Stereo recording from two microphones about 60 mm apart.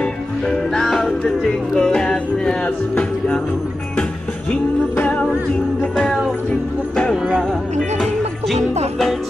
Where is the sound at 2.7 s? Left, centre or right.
Left.